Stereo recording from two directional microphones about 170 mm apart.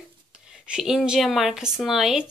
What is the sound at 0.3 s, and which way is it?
Speech, 5° right (ahead or behind).